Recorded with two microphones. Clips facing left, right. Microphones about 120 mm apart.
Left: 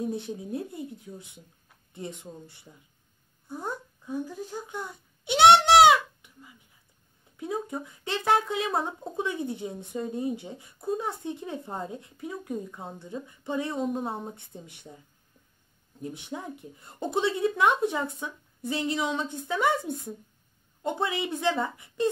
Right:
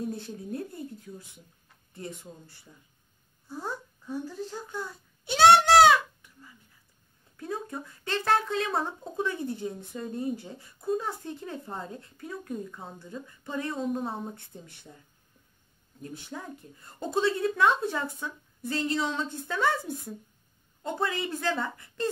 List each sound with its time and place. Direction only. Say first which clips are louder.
0.1 s a woman's voice: left 3 dB; 20° left (ahead or behind)
3.4 s a sound: left 1 dB; 20° left (ahead or behind)
7.6 s a woman's voice: left 2 dB; 15° left (ahead or behind)
16.0 s a woman's voice: left 3 dB; 20° left (ahead or behind)